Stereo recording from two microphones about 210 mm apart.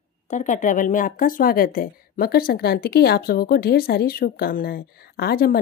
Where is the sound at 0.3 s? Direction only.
35° left (ahead or behind).